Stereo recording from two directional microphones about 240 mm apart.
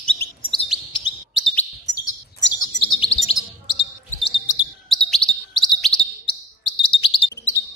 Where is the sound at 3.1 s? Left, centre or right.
Left.